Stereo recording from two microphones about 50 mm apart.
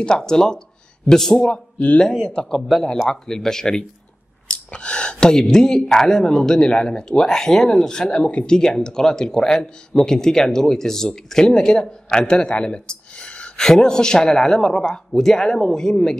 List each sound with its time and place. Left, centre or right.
0.0 s speech: centre
2.3 s speech: centre
8.0 s speech: left